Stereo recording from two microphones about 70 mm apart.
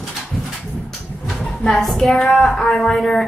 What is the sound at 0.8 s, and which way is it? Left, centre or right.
Vehicle, centre.